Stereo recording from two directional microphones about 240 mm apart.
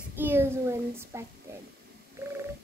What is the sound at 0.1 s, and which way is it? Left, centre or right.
A child's voice, centre.